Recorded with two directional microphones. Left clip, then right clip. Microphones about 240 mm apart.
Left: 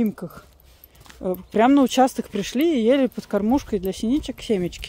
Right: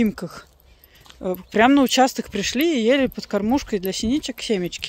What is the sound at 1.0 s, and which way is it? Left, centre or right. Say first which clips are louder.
Speech: even; centre.